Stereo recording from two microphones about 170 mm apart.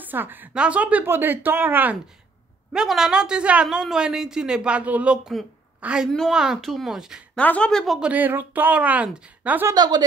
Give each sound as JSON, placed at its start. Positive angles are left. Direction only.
{"t": 0.0, "sound": "a woman's voice", "side_deg": -10}
{"t": 7.3, "sound": "speech", "side_deg": 5}
{"t": 9.8, "sound": "a woman's voice", "side_deg": -25}